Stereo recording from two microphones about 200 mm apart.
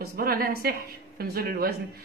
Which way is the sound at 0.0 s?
50° right (ahead or behind).